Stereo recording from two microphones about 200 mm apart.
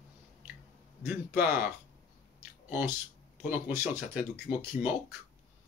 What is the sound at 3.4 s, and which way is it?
Speech, 10° right (ahead or behind).